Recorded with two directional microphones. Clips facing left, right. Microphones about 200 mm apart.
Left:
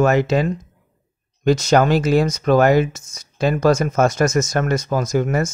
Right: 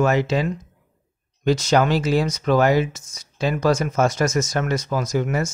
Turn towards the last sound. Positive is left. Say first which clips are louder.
# left 3 dB
turn(degrees=45)  # may be behind; listen again after turning